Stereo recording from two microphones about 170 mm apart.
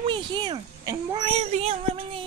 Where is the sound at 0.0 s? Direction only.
30° right (ahead or behind).